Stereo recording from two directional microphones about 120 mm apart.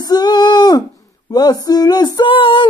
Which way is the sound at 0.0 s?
35° left (ahead or behind).